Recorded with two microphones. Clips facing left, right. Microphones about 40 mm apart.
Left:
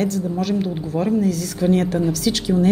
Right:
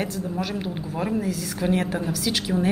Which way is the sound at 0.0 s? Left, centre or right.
Centre.